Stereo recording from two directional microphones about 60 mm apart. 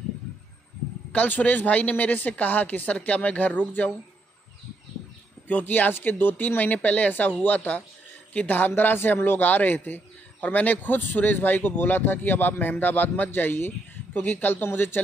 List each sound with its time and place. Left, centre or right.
1.1 s a woman's voice: left
5.5 s a woman's voice: left